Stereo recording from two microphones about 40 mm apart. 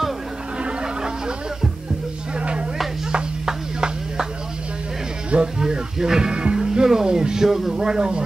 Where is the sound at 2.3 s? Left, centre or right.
Right.